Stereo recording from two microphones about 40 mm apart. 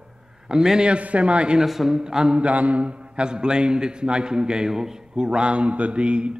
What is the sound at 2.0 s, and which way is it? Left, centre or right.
A man's voice, centre.